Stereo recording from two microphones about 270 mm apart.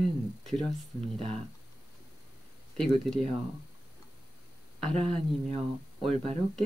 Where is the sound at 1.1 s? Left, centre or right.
Right.